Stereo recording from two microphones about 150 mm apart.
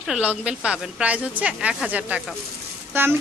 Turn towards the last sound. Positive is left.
turn(degrees=-15)  # may be behind; listen again after turning